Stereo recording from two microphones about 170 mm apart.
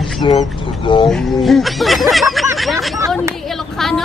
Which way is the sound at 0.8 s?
30° left (ahead or behind).